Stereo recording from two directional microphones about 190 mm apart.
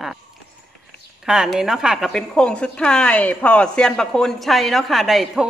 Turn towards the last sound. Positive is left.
turn(degrees=0)  # may be behind; listen again after turning